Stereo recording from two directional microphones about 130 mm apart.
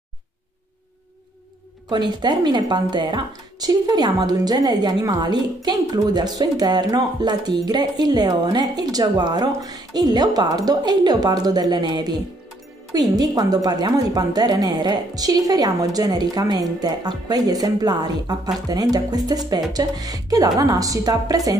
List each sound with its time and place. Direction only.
1.9 s a woman's voice: 35° right (ahead or behind)